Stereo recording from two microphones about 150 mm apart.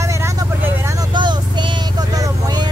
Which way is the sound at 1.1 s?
30° right (ahead or behind).